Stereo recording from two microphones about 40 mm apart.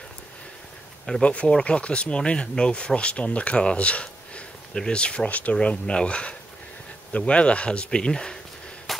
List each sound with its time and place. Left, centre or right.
1.2 s speech: left